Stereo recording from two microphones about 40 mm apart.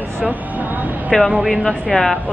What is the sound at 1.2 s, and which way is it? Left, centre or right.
Speech, right.